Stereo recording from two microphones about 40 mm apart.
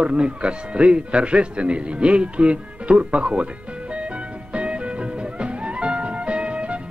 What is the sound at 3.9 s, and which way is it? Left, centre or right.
Music, right.